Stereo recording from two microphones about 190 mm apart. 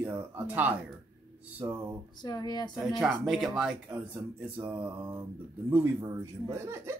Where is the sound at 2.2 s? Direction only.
20° left (ahead or behind).